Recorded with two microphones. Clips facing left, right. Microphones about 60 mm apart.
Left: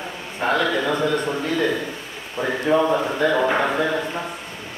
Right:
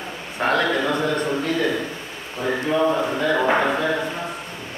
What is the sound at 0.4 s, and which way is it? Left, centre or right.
Speech, right.